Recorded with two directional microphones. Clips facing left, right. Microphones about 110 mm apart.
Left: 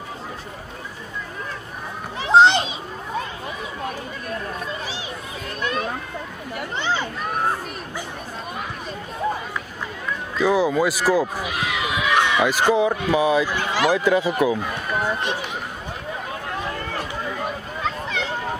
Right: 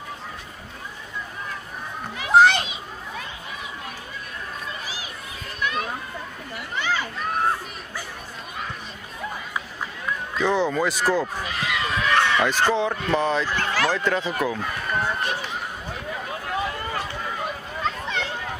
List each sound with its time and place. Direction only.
2.1 s children playing: 25° left (ahead or behind)
6.7 s children playing: 25° left (ahead or behind)
10.3 s speech: 5° left (ahead or behind)
17.8 s a sound: centre (ahead or behind)